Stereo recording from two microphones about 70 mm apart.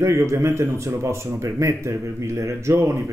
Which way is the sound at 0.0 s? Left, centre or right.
Right.